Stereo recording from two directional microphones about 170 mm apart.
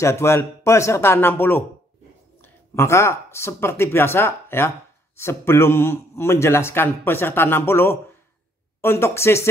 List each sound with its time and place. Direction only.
0.0 s speech: 15° left (ahead or behind)